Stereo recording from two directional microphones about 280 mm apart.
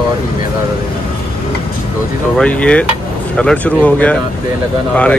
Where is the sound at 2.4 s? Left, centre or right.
Centre.